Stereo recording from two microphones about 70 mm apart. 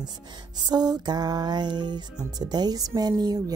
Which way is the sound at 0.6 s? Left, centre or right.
Right.